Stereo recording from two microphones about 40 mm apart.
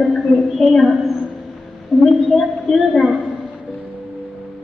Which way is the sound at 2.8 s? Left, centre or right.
Centre.